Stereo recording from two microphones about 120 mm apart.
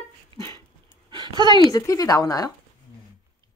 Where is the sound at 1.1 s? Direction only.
40° right (ahead or behind).